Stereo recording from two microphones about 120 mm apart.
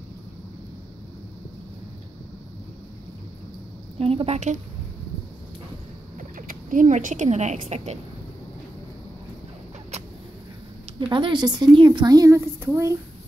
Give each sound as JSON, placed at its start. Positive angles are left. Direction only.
{"t": 4.0, "sound": "a woman's voice", "side_deg": -55}
{"t": 6.1, "sound": "speech", "side_deg": -90}
{"t": 11.0, "sound": "a woman's voice", "side_deg": -45}